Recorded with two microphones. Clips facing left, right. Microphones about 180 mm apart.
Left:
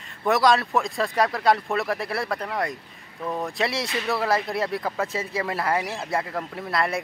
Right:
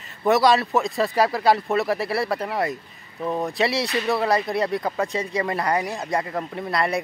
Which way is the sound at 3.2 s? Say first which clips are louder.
Right 3 dB; 15° right (ahead or behind).